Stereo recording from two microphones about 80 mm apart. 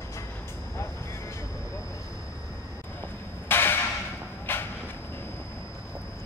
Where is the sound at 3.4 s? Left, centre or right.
Left.